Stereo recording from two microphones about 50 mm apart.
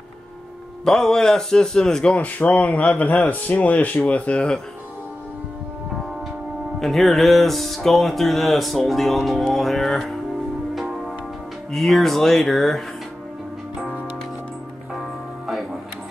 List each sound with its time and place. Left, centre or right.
0.8 s a man's voice: centre
2.1 s speech: left
6.8 s music: centre
11.7 s music: centre